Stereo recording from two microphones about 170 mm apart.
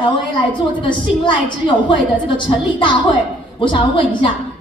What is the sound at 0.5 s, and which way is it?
A woman's voice, 30° left (ahead or behind).